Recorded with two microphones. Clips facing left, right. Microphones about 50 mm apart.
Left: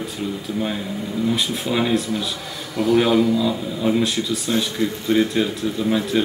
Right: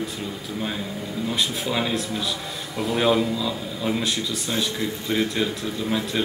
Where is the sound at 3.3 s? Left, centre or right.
Centre.